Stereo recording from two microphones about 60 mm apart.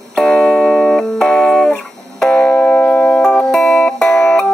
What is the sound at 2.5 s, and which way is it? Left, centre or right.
Music, left.